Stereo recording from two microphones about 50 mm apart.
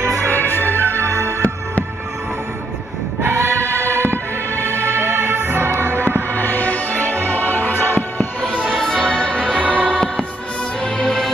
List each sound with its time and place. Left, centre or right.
0.0 s music: right
0.4 s music: left
0.8 s music: right
3.2 s choir: right
3.8 s music: right
5.9 s music: left
8.6 s music: centre
9.0 s music: centre
9.6 s music: right
9.8 s music: centre